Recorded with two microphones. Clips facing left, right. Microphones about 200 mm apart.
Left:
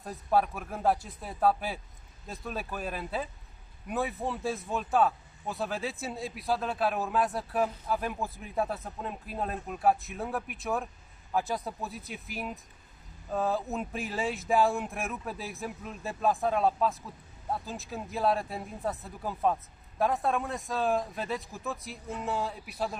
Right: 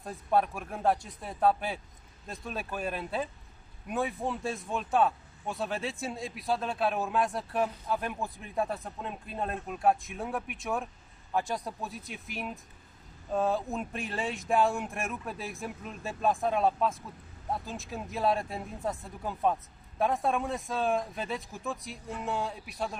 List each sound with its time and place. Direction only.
0.0 s speech: centre (ahead or behind)